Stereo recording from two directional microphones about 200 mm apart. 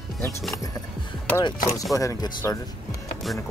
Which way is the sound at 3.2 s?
Centre (ahead or behind).